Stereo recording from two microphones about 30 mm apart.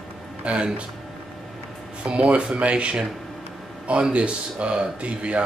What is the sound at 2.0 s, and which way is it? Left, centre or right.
Speech, right.